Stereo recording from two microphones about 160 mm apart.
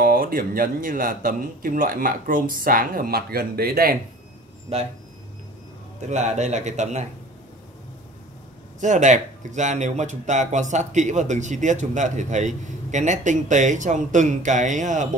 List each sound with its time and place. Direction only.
0.0 s speech: 65° right (ahead or behind)
4.7 s speech: 40° right (ahead or behind)
5.9 s speech: 45° right (ahead or behind)
8.7 s speech: 50° right (ahead or behind)